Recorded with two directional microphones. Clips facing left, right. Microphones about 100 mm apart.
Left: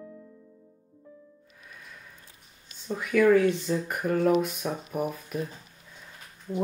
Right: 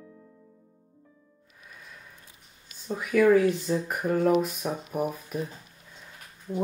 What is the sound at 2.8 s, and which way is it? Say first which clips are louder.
Speech: even; 5° right (ahead or behind).